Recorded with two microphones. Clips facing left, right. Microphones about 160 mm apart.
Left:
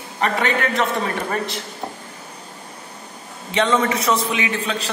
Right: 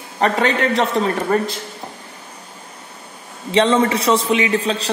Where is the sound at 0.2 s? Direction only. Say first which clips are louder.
Right 4 dB; 35° right (ahead or behind).